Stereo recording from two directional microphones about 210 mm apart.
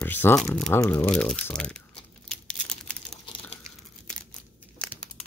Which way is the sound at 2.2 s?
5° left (ahead or behind).